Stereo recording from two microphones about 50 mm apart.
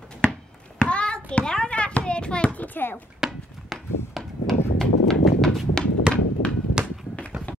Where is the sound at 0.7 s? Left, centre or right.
Left.